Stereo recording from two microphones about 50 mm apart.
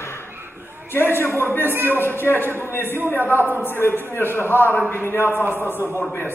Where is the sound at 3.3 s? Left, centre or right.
Right.